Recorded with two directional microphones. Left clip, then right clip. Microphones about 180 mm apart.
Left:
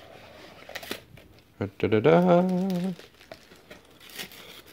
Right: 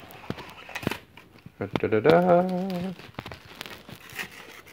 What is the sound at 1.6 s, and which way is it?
Speech, 70° left (ahead or behind).